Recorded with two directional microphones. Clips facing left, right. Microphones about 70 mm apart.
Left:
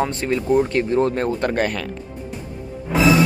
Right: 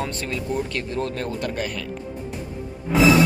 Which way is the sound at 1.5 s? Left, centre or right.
Left.